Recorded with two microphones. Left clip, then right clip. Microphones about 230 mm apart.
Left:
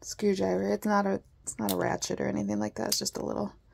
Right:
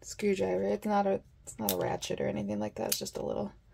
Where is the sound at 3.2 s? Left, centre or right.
Left.